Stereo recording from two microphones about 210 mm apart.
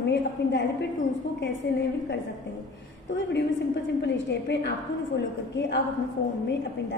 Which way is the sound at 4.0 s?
55° left (ahead or behind).